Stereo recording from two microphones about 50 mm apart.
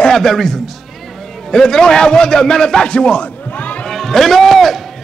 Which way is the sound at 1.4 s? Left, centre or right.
Centre.